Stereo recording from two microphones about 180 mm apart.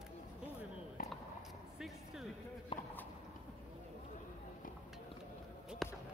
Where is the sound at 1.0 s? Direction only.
50° left (ahead or behind).